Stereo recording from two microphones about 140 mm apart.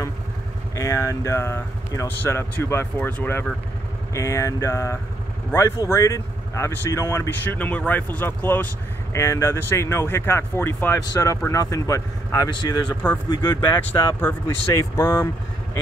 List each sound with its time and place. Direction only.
0.7 s speech: 20° left (ahead or behind)